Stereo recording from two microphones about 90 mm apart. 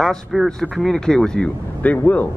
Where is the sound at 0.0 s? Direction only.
Centre (ahead or behind).